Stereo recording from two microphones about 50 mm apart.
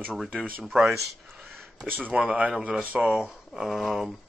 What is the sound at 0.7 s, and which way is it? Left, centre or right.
Speech, centre.